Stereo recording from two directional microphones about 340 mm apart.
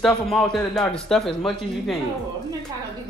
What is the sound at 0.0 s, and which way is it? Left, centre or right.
Speech, centre.